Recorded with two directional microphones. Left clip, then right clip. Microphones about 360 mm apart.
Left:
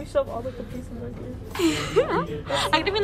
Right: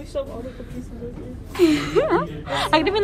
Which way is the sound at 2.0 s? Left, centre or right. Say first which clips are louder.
Right 1 dB; centre.